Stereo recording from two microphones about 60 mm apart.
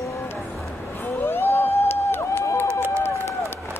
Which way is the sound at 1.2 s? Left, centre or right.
Left.